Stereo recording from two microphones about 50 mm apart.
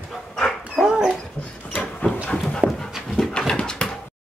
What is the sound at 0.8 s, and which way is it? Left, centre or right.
Dog, centre.